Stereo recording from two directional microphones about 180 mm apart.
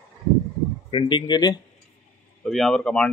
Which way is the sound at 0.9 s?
25° left (ahead or behind).